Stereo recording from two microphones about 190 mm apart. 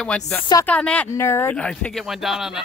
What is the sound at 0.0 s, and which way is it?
Speech, 5° left (ahead or behind).